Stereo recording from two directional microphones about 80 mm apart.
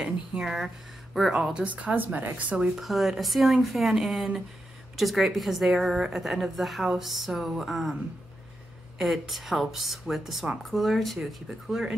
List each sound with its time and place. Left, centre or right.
0.0 s a woman's voice: centre
1.6 s a woman's voice: centre